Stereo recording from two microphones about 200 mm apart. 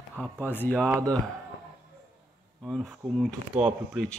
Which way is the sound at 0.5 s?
10° left (ahead or behind).